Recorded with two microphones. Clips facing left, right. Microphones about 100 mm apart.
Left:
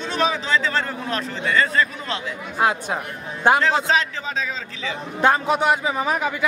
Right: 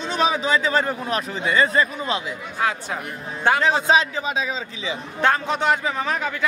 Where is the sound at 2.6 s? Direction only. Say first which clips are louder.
Left 4 dB; 15° left (ahead or behind).